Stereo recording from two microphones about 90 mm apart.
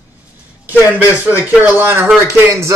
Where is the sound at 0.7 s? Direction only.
20° right (ahead or behind).